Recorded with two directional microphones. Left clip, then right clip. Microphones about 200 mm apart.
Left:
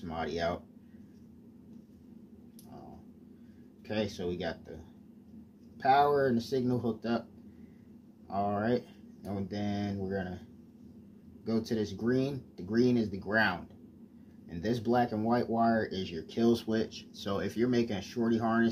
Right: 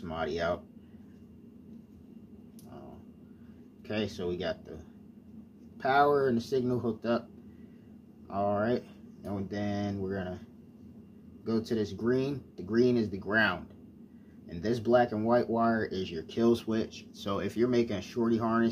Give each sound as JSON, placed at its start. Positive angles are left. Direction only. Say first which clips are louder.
{"t": 0.0, "sound": "speech", "louder": "right 1 dB", "side_deg": -15}
{"t": 3.8, "sound": "speech", "louder": "even", "side_deg": -15}
{"t": 5.8, "sound": "speech", "louder": "even", "side_deg": -15}
{"t": 8.3, "sound": "speech", "louder": "right 2 dB", "side_deg": -10}
{"t": 11.4, "sound": "speech", "louder": "right 2 dB", "side_deg": -15}